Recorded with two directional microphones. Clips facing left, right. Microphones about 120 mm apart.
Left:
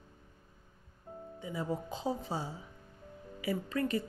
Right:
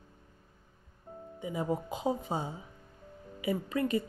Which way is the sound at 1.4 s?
20° right (ahead or behind).